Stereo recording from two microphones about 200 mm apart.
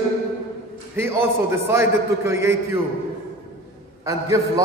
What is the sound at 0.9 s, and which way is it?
A man's voice, 10° right (ahead or behind).